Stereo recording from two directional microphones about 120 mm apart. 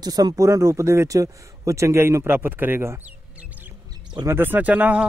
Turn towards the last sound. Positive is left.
turn(degrees=-10)  # may be behind; listen again after turning